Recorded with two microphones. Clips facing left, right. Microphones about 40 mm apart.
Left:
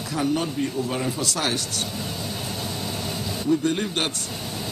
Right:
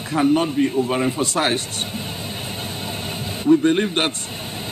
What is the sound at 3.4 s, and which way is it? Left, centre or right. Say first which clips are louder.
Speech: right 7 dB; right.